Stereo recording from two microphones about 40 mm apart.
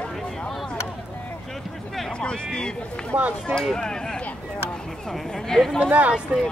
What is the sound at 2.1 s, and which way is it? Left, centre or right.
Speech, left.